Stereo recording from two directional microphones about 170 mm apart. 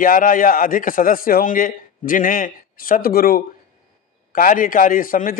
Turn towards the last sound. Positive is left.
turn(degrees=55)  # may be behind; listen again after turning